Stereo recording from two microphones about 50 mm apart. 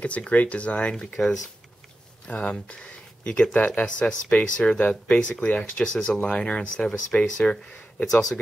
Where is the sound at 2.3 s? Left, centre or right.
Left.